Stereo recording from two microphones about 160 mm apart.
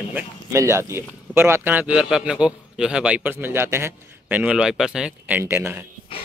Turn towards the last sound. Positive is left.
turn(degrees=-15)  # may be behind; listen again after turning